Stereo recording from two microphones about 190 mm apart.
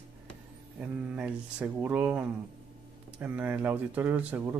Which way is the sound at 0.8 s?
5° right (ahead or behind).